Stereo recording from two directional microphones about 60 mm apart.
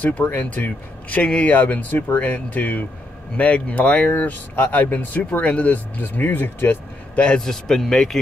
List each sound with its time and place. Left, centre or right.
0.0 s a man's voice: left
1.5 s speech: left
7.2 s a man's voice: centre